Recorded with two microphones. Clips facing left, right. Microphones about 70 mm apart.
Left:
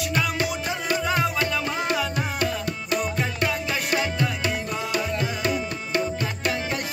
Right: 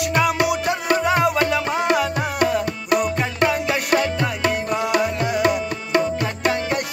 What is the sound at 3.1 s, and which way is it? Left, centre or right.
Music, right.